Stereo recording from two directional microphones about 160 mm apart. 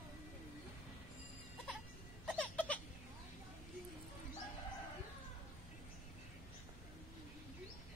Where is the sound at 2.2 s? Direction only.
10° left (ahead or behind).